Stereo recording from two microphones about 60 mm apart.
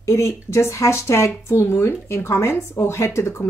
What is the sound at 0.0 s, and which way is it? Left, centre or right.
Speech, left.